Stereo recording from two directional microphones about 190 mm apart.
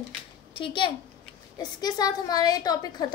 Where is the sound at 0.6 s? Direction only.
25° left (ahead or behind).